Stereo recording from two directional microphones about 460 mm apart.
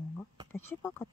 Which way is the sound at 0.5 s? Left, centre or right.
Centre.